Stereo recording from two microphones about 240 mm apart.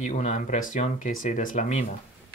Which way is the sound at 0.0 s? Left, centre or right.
Left.